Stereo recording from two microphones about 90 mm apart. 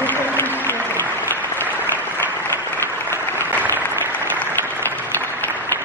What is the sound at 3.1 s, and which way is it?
Applause, 25° left (ahead or behind).